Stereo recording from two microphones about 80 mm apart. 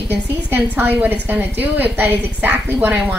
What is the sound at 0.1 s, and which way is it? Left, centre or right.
A woman's voice, right.